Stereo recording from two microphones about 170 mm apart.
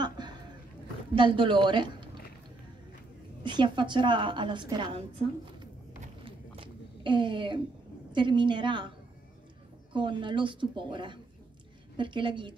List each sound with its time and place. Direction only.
0.0 s a sound: 25° right (ahead or behind)
1.1 s a woman's voice: 30° right (ahead or behind)
3.4 s a woman's voice: 30° right (ahead or behind)
6.2 s a sound: 30° right (ahead or behind)
8.1 s a woman's voice: 30° right (ahead or behind)
9.9 s a woman's voice: 30° right (ahead or behind)